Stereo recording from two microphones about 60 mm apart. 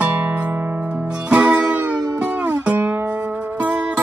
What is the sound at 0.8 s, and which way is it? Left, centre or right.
Music, right.